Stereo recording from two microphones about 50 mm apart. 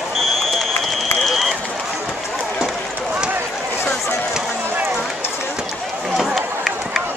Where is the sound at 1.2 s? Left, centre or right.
Centre.